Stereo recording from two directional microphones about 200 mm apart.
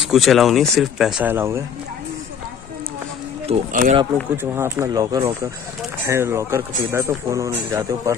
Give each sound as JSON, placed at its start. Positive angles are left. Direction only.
{"t": 0.0, "sound": "speech", "side_deg": 0}
{"t": 3.4, "sound": "speech", "side_deg": -35}
{"t": 4.4, "sound": "speech", "side_deg": -10}